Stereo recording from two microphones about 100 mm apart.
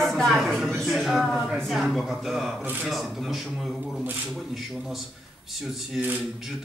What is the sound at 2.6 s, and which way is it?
Speech, 20° right (ahead or behind).